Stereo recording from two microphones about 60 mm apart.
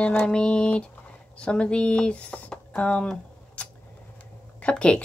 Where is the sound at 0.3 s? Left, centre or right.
Centre.